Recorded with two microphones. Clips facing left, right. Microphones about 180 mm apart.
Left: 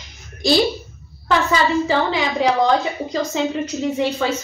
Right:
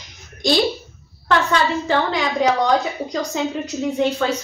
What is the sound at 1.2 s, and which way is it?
A woman's voice, 5° left (ahead or behind).